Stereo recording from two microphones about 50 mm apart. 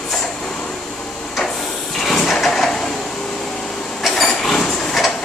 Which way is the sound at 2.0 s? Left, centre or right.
Centre.